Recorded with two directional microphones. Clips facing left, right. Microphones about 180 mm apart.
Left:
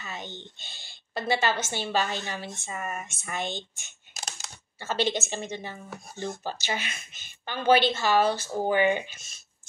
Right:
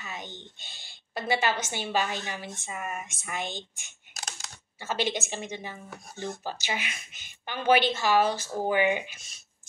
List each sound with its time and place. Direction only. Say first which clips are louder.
0.1 s speech: left 3 dB; 30° left (ahead or behind)
1.1 s speech: left 1 dB; 15° right (ahead or behind)
4.2 s computer keyboard: left 1 dB; 5° right (ahead or behind)
5.0 s speech: left 4 dB; 10° right (ahead or behind)
8.2 s speech: left 1 dB; 30° left (ahead or behind)
8.6 s speech: left 1 dB; 5° right (ahead or behind)